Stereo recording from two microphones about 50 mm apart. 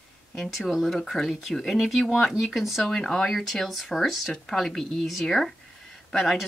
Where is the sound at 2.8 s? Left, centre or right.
Centre.